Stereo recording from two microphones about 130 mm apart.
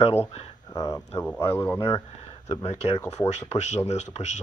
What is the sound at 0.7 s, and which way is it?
Speech, 25° left (ahead or behind).